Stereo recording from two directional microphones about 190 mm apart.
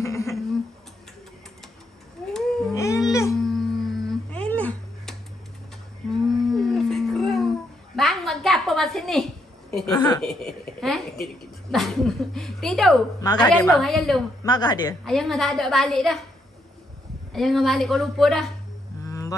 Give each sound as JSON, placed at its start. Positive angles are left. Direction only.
{"t": 0.0, "sound": "a sound", "side_deg": 15}
{"t": 2.7, "sound": "music", "side_deg": 15}
{"t": 3.1, "sound": "babbling", "side_deg": 15}
{"t": 3.3, "sound": "a sound", "side_deg": 0}
{"t": 6.2, "sound": "a sound", "side_deg": 0}
{"t": 9.8, "sound": "a woman's voice", "side_deg": 20}
{"t": 10.2, "sound": "speech", "side_deg": 5}
{"t": 13.2, "sound": "a woman's voice", "side_deg": 20}
{"t": 13.7, "sound": "speech", "side_deg": 0}
{"t": 14.4, "sound": "a woman's voice", "side_deg": 20}
{"t": 15.0, "sound": "speech", "side_deg": 0}
{"t": 17.3, "sound": "speech", "side_deg": 0}
{"t": 19.0, "sound": "whale vocalization", "side_deg": 15}